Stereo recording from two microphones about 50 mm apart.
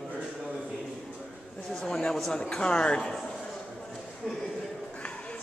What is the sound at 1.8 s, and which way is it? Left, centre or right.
Speech, centre.